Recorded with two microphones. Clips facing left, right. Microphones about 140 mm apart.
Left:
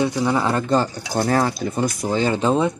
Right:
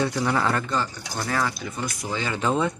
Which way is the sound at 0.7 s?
40° left (ahead or behind).